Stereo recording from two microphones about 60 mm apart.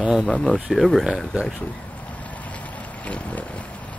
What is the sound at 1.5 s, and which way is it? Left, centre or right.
Boat, left.